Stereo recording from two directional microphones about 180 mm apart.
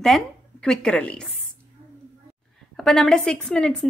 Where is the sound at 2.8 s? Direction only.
5° left (ahead or behind).